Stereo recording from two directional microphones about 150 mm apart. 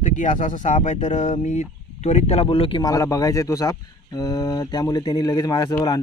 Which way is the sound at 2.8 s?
20° left (ahead or behind).